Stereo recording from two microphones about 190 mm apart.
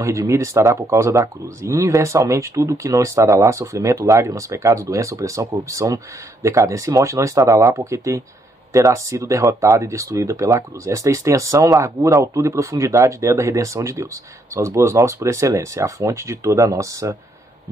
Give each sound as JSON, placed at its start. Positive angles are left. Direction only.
{"t": 0.0, "sound": "speech", "side_deg": -15}